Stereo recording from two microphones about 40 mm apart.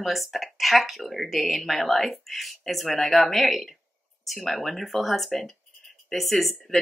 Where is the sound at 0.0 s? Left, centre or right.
Centre.